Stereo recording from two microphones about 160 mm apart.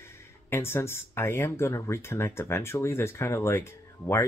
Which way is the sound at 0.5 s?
15° left (ahead or behind).